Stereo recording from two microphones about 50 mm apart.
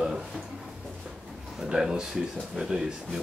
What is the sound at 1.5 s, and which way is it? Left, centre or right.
Speech, centre.